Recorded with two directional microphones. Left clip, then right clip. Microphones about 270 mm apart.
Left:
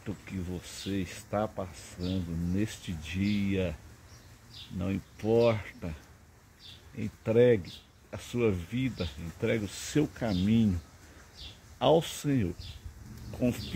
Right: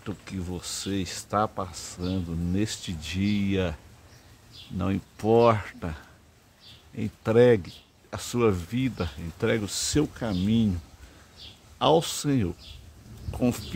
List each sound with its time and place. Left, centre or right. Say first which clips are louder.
0.0 s speech: right 4 dB; centre
4.7 s speech: right 6 dB; centre
7.0 s speech: right 4 dB; centre
11.8 s speech: right 3 dB; centre